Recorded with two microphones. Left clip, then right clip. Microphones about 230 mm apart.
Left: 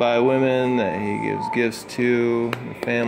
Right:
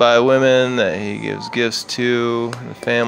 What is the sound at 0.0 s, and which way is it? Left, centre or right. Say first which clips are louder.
Speech: right 6 dB; right.